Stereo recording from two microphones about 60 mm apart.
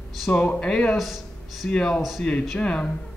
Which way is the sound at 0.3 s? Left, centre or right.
Left.